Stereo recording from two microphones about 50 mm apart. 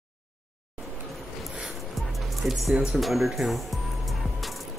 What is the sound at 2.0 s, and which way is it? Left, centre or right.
Music, centre.